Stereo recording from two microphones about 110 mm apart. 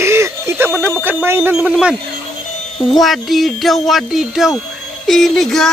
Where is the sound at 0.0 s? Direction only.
25° right (ahead or behind).